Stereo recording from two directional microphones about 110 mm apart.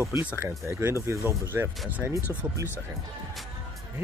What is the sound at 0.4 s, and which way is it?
Speech, 20° right (ahead or behind).